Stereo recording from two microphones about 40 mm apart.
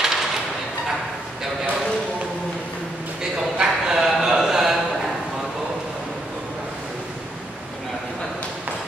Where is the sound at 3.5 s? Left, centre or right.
Centre.